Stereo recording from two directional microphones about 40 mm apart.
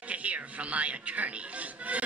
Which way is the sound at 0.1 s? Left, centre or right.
Right.